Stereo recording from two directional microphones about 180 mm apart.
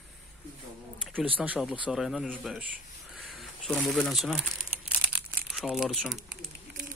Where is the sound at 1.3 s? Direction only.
10° right (ahead or behind).